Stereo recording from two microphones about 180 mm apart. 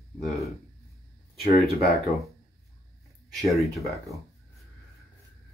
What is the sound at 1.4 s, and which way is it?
Speech, 60° left (ahead or behind).